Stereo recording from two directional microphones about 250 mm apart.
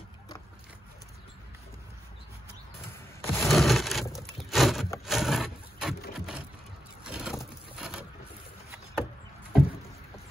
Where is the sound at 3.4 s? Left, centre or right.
Centre.